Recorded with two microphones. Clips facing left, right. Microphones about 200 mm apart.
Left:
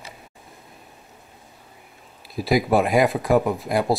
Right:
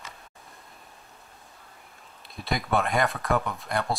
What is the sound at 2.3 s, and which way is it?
Speech, centre (ahead or behind).